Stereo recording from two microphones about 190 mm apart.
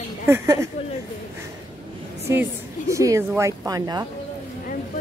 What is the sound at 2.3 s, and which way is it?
A woman's voice, 15° right (ahead or behind).